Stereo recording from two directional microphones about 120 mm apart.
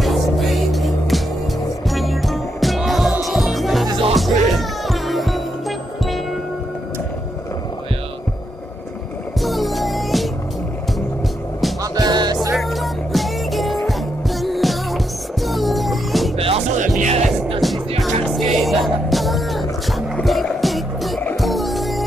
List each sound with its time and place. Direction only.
0.0 s music: centre (ahead or behind)
9.4 s music: centre (ahead or behind)
11.8 s music: 30° right (ahead or behind)
12.5 s music: centre (ahead or behind)
16.3 s music: 55° right (ahead or behind)
17.0 s music: 75° right (ahead or behind)
17.6 s music: centre (ahead or behind)